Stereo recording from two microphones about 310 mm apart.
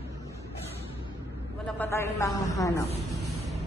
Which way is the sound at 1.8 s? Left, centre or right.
Centre.